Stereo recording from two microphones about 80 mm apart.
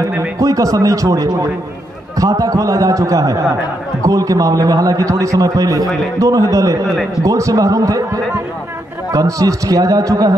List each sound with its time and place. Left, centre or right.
0.4 s a man's voice: right